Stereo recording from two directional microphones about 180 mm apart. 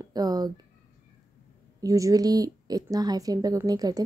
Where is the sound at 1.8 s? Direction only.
20° right (ahead or behind).